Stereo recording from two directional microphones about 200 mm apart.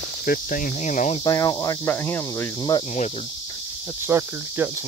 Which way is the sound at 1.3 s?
20° left (ahead or behind).